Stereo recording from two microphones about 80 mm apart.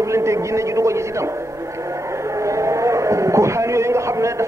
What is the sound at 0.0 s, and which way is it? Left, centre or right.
A man's voice, right.